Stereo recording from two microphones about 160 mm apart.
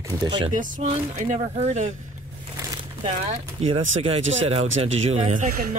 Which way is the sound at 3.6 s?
35° right (ahead or behind).